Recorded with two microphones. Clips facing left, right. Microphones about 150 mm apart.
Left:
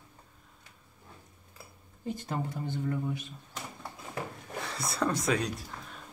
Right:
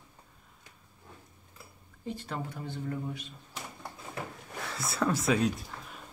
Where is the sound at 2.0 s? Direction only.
45° left (ahead or behind).